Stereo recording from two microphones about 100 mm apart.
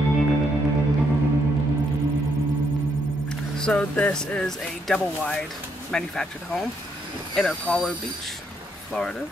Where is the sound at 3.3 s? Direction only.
10° left (ahead or behind).